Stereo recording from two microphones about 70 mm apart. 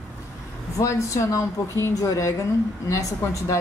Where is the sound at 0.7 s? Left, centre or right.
Left.